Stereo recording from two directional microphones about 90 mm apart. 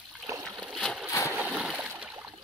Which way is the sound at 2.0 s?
15° right (ahead or behind).